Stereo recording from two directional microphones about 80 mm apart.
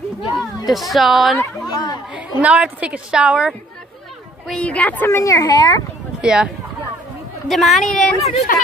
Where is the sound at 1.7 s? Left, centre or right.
Left.